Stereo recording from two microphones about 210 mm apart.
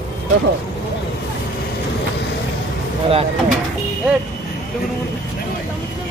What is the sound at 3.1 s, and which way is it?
Speech, 30° right (ahead or behind).